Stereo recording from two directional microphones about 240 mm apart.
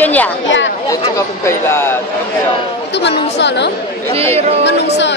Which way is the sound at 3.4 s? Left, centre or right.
Left.